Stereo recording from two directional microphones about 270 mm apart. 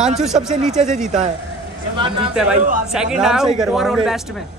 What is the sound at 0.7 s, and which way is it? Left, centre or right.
Speech, right.